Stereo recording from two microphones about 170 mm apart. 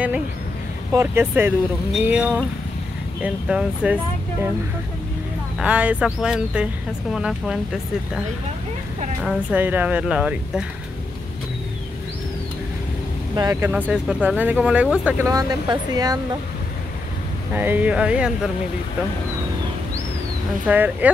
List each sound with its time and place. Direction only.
0.9 s speech: 15° right (ahead or behind)
5.6 s speech: 5° right (ahead or behind)
9.2 s speech: 5° right (ahead or behind)
13.4 s speech: 20° right (ahead or behind)
13.7 s speech: 5° right (ahead or behind)
15.2 s speech: 25° right (ahead or behind)
17.6 s speech: 10° right (ahead or behind)
20.6 s speech: 10° right (ahead or behind)